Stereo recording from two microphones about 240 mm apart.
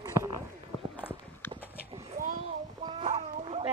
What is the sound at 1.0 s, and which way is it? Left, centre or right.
Clip-clop, centre.